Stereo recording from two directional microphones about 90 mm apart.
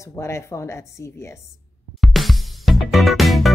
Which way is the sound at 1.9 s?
Centre (ahead or behind).